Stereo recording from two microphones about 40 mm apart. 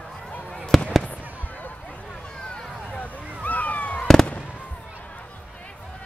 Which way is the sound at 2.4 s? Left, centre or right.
Left.